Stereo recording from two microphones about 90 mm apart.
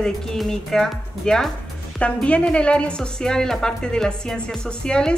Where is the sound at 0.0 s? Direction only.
5° left (ahead or behind).